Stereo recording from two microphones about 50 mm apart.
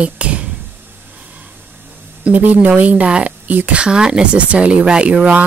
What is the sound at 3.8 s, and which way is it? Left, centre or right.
Speech, centre.